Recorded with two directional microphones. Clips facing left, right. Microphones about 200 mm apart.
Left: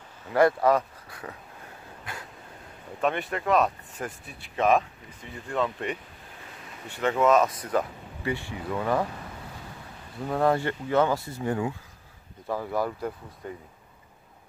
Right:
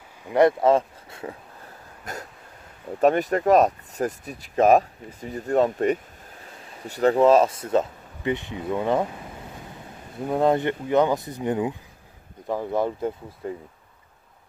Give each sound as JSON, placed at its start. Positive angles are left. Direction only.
{"t": 0.2, "sound": "speech", "side_deg": -20}
{"t": 2.1, "sound": "a sound", "side_deg": -45}
{"t": 3.0, "sound": "speech", "side_deg": -40}
{"t": 10.1, "sound": "speech", "side_deg": -20}